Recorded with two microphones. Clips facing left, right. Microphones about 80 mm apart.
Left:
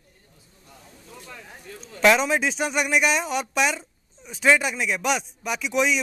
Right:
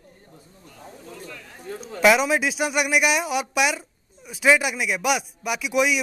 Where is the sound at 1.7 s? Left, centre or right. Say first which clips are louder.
Right 11 dB; right.